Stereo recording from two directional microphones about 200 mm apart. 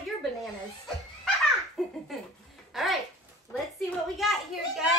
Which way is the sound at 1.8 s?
5° left (ahead or behind).